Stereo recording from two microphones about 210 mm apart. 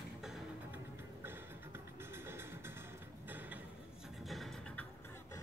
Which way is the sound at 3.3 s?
10° right (ahead or behind).